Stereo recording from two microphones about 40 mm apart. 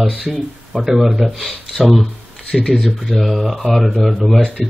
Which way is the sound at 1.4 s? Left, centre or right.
Centre.